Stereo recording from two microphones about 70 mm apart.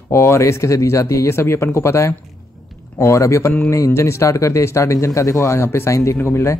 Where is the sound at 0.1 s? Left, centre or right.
Left.